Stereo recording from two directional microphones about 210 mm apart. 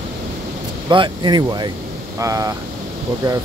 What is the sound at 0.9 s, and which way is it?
Speech, 20° right (ahead or behind).